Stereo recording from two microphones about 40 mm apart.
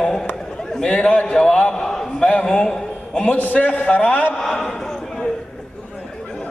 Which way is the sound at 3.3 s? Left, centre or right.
Left.